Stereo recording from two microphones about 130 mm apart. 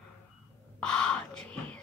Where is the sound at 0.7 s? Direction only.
10° left (ahead or behind).